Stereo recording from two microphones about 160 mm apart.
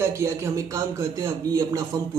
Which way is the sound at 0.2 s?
20° right (ahead or behind).